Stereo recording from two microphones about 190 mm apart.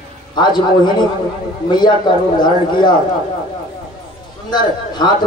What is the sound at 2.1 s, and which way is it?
Speech, 25° left (ahead or behind).